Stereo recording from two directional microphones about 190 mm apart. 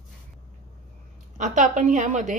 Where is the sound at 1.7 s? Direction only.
40° right (ahead or behind).